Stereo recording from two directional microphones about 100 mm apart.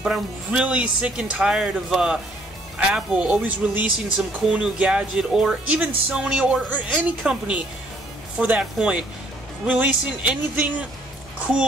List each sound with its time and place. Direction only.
0.0 s speech: 5° right (ahead or behind)